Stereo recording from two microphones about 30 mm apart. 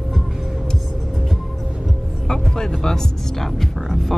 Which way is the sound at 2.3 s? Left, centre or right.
Centre.